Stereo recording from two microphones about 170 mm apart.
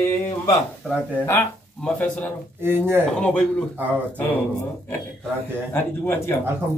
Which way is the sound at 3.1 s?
5° left (ahead or behind).